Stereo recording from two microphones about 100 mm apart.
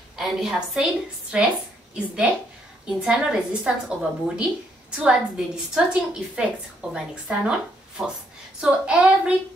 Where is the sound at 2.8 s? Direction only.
10° right (ahead or behind).